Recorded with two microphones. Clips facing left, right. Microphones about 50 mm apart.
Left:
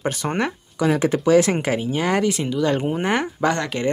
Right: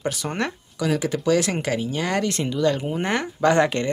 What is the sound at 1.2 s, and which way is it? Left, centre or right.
Speech, centre.